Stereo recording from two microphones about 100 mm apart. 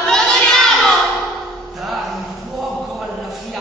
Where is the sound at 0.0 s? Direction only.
5° left (ahead or behind).